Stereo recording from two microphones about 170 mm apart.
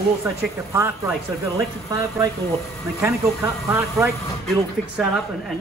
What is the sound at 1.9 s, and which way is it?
Speech, 20° right (ahead or behind).